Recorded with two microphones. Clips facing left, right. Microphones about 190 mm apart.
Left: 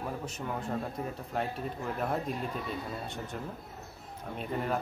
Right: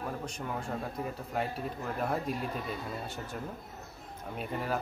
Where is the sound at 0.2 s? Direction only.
Centre (ahead or behind).